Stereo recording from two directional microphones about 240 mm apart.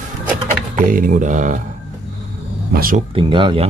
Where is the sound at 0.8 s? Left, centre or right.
Right.